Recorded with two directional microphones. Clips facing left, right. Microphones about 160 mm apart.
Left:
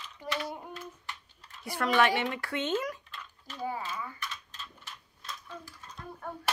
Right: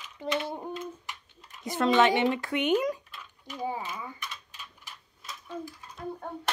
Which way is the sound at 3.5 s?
15° right (ahead or behind).